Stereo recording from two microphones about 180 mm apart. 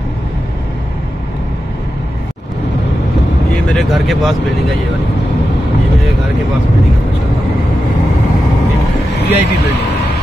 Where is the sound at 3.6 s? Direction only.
Centre (ahead or behind).